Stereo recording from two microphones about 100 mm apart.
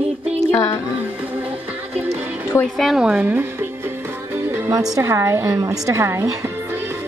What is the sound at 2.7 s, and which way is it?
Speech, centre (ahead or behind).